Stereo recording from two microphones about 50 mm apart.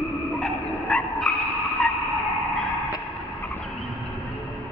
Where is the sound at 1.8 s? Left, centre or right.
Left.